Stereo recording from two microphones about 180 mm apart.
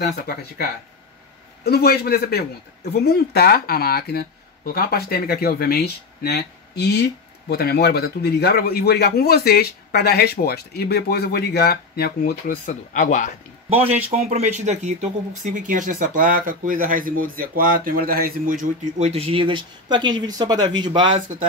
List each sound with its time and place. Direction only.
1.6 s speech: 60° left (ahead or behind)
14.1 s speech: 40° right (ahead or behind)